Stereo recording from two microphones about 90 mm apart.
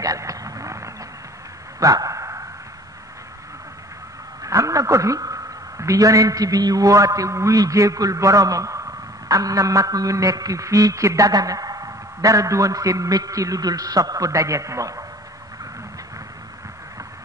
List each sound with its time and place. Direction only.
0.0 s a sound: 40° right (ahead or behind)
1.8 s dog: 40° right (ahead or behind)
4.4 s a woman's voice: 35° right (ahead or behind)